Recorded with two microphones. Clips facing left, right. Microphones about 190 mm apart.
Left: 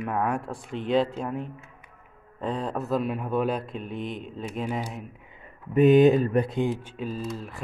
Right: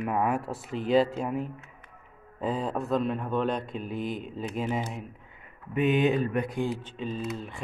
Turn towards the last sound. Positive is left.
turn(degrees=0)  # may be behind; listen again after turning